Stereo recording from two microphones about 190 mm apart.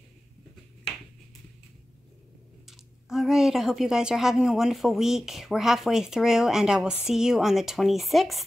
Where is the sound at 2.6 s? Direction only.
Centre (ahead or behind).